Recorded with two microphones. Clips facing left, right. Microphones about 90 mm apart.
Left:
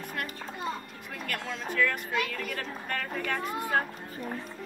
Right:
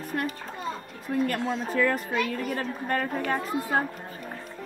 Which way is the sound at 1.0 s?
30° right (ahead or behind).